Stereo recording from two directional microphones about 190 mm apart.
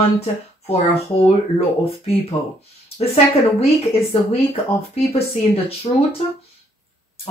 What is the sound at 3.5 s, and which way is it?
Speech, 30° left (ahead or behind).